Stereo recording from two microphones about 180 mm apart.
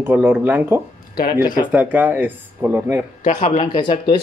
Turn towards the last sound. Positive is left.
turn(degrees=25)  # may be behind; listen again after turning